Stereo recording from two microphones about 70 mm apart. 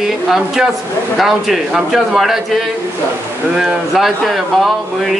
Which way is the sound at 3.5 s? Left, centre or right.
Centre.